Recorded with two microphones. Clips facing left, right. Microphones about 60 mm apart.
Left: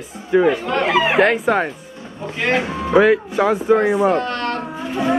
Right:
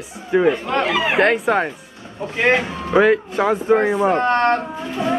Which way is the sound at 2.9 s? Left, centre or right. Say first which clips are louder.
Left 1 dB; centre.